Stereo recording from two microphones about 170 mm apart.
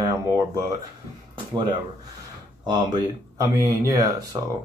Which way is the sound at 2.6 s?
25° right (ahead or behind).